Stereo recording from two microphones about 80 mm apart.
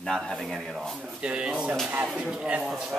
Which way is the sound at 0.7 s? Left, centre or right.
Centre.